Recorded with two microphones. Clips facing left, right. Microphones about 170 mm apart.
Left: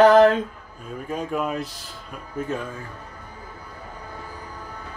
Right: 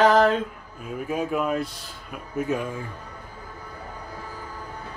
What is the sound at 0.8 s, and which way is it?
Speech, 10° right (ahead or behind).